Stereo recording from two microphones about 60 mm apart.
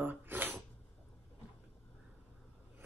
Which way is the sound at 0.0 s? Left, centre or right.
Right.